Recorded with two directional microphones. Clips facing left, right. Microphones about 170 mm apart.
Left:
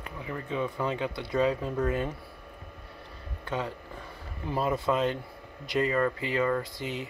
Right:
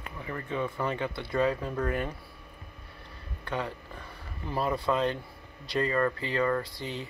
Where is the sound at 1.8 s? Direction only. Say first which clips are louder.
Left 2 dB; 20° left (ahead or behind).